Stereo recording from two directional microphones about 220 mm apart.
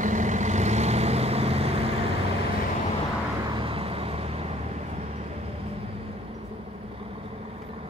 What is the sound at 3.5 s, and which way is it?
Vehicle, 25° right (ahead or behind).